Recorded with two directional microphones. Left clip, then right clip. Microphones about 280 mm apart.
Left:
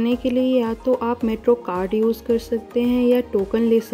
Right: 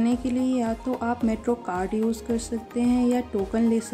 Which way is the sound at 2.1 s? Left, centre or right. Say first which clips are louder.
Left 8 dB; right.